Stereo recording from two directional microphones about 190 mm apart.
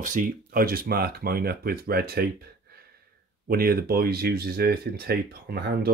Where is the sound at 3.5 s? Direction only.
50° right (ahead or behind).